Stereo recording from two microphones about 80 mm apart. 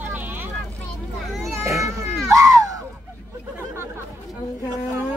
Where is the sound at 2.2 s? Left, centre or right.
Right.